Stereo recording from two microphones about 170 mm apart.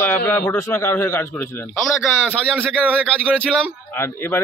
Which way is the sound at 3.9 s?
15° left (ahead or behind).